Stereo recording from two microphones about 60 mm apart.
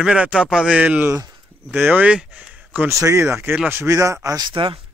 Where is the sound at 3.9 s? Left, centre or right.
Right.